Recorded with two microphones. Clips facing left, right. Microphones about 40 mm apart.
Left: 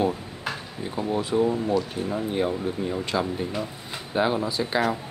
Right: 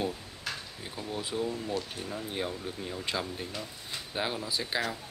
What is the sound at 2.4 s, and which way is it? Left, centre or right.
Filing, left.